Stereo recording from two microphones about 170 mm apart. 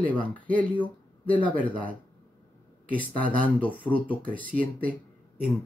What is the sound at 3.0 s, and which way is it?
Speech, 10° left (ahead or behind).